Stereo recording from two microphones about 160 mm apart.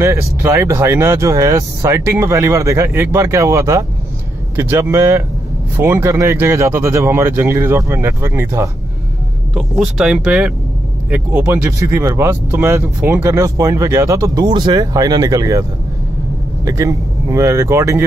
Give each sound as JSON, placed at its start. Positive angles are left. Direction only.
{"t": 0.0, "sound": "speech", "side_deg": -15}
{"t": 9.5, "sound": "speech", "side_deg": -5}
{"t": 16.6, "sound": "speech", "side_deg": -20}